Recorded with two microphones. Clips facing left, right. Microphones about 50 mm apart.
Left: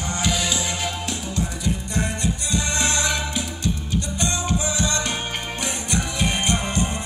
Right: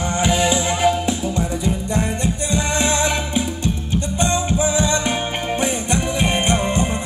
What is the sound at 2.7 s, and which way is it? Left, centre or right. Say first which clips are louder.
Music: right 4 dB; right.